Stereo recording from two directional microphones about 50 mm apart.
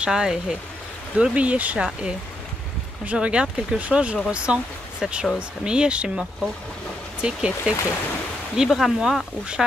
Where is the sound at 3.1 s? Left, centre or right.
Right.